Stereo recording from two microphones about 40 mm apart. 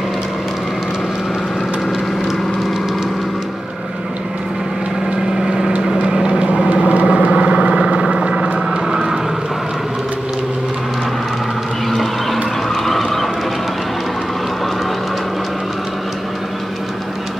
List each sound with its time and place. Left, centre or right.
6.7 s vehicle: right; by 9.2 s centre
11.9 s a sound: centre
12.8 s vehicle: centre